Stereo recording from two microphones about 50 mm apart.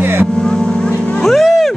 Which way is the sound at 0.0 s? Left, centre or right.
Right.